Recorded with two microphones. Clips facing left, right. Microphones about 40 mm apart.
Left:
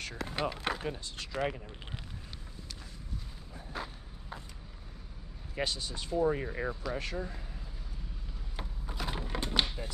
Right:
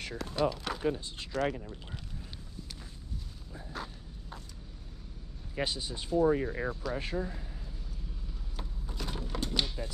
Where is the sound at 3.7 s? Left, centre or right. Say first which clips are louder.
Left 1 dB; centre.